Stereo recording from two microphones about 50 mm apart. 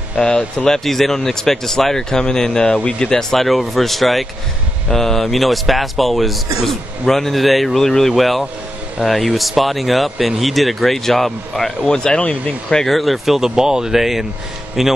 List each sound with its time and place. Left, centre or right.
0.1 s speech: centre
0.7 s speech: centre
11.8 s speech: centre
12.8 s a man's voice: centre